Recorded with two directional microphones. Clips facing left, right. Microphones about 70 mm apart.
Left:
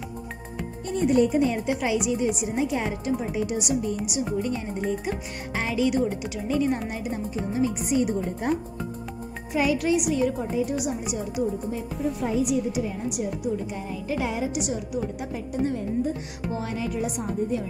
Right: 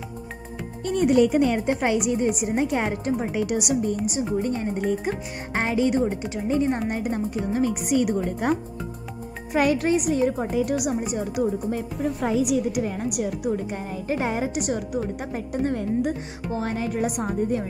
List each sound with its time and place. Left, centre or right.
0.8 s speech: right
1.7 s a woman's voice: right
4.0 s speech: right
6.9 s a woman's voice: right
9.5 s speech: right
10.4 s a woman's voice: right
10.9 s a woman's voice: right
14.0 s a woman's voice: right